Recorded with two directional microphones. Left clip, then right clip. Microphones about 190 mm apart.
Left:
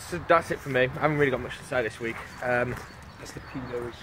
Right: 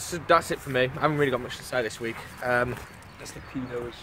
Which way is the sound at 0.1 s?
15° right (ahead or behind).